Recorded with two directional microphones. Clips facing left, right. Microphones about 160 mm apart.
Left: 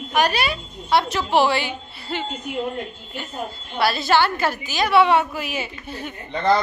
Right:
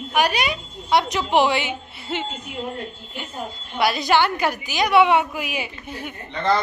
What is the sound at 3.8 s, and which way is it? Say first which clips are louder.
A woman's voice: even; 15° right (ahead or behind).